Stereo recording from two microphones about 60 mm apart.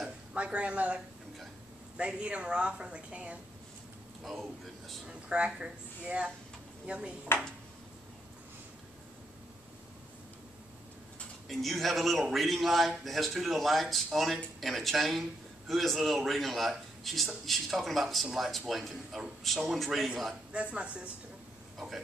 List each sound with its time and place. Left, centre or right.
0.3 s a woman's voice: centre
4.2 s a man's voice: centre
5.0 s a woman's voice: centre
11.4 s a man's voice: centre
20.5 s a woman's voice: centre
21.7 s speech: centre